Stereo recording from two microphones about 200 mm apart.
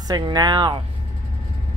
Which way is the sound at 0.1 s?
20° right (ahead or behind).